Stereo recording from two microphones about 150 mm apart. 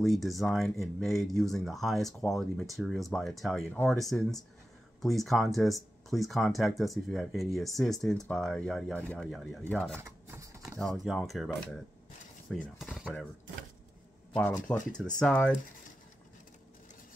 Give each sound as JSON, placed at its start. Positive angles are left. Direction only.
{"t": 0.0, "sound": "speech", "side_deg": 0}
{"t": 9.9, "sound": "typing", "side_deg": -15}
{"t": 10.6, "sound": "speech", "side_deg": 0}
{"t": 12.4, "sound": "cutlery", "side_deg": 5}
{"t": 14.7, "sound": "speech", "side_deg": 10}